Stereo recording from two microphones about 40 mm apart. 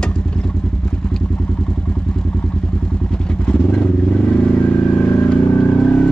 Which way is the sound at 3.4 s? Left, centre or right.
Left.